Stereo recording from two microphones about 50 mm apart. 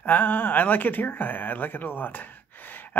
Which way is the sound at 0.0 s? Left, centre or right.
Left.